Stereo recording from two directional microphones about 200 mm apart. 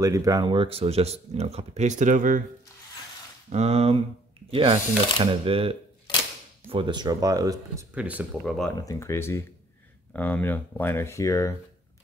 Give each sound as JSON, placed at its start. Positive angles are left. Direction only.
{"t": 0.0, "sound": "speech", "side_deg": -15}
{"t": 3.4, "sound": "speech", "side_deg": -30}
{"t": 7.9, "sound": "speech", "side_deg": -5}
{"t": 8.8, "sound": "speech", "side_deg": 15}